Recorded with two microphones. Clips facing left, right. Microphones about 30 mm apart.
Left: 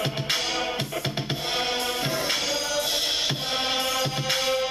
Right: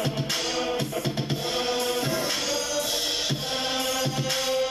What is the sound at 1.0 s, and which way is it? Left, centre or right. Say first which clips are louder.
Music: right 1 dB; left.